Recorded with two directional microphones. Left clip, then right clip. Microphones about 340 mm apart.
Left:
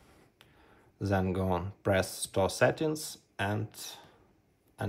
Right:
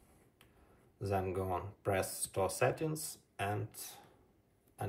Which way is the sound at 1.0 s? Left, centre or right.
Left.